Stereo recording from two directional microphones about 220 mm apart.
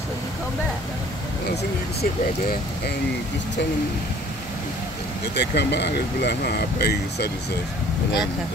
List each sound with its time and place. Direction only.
5.3 s speech: 50° left (ahead or behind)